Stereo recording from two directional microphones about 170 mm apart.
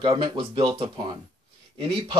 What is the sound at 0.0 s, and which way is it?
Speech, 30° right (ahead or behind).